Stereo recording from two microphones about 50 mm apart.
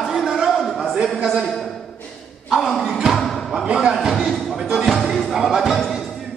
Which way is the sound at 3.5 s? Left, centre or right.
Centre.